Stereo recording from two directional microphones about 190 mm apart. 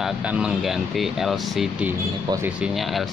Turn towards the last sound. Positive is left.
turn(degrees=0)  # may be behind; listen again after turning